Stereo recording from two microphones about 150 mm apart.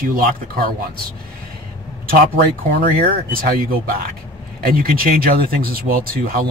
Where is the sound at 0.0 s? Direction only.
75° right (ahead or behind).